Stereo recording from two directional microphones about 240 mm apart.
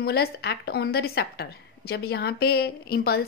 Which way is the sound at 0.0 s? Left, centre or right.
Left.